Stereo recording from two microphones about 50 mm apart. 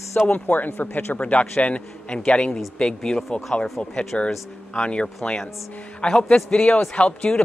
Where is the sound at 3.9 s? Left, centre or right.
Left.